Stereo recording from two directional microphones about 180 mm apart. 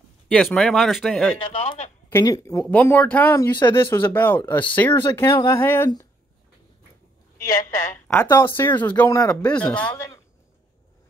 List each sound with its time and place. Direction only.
0.3 s speech: 5° left (ahead or behind)
1.4 s a man's voice: 35° left (ahead or behind)
2.0 s a woman's voice: 15° left (ahead or behind)
7.3 s a woman's voice: 55° left (ahead or behind)
7.9 s speech: 15° left (ahead or behind)